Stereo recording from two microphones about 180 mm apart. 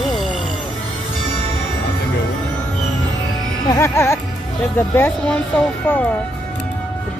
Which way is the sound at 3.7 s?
15° left (ahead or behind).